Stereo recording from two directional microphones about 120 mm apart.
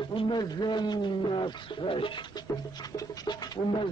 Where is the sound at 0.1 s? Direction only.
35° left (ahead or behind).